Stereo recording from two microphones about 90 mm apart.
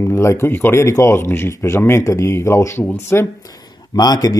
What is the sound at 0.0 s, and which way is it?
Speech, 30° left (ahead or behind).